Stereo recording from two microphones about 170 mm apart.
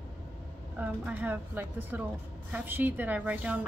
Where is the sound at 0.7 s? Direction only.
10° right (ahead or behind).